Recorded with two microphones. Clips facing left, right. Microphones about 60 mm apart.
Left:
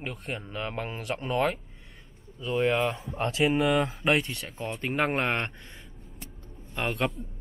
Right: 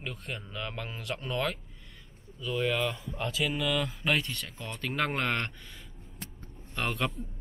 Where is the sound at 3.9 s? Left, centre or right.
Centre.